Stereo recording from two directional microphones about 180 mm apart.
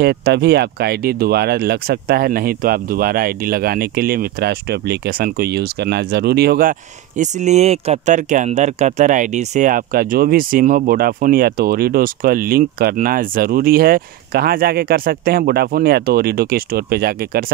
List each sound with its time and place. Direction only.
0.0 s speech: 65° right (ahead or behind)
7.2 s speech: 40° right (ahead or behind); by 17.5 s 55° right (ahead or behind)